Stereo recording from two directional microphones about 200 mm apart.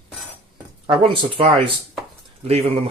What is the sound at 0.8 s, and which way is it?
Speech, 25° right (ahead or behind).